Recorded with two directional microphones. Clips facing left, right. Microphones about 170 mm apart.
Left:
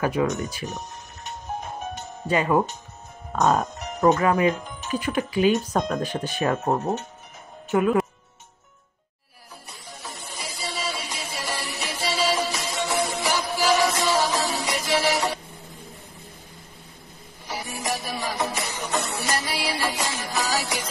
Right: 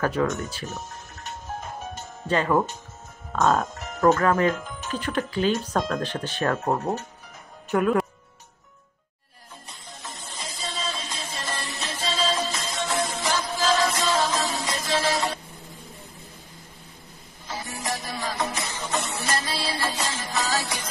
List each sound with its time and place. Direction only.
0.0 s speech: 15° left (ahead or behind)
2.0 s music: 10° left (ahead or behind)
3.3 s speech: 15° left (ahead or behind)
7.7 s speech: 5° left (ahead or behind)
9.8 s music: 15° left (ahead or behind)
17.5 s music: 15° left (ahead or behind)